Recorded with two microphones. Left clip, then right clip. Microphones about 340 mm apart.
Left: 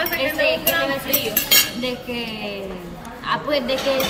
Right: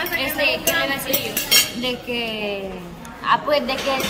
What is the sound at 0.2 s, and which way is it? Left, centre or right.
Music, right.